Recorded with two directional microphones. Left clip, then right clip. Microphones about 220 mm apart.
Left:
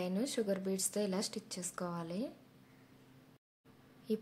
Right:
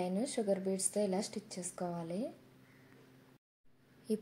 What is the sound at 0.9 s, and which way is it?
Speech, 35° left (ahead or behind).